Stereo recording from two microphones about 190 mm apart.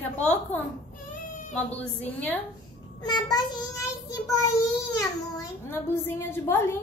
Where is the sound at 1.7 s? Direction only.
10° left (ahead or behind).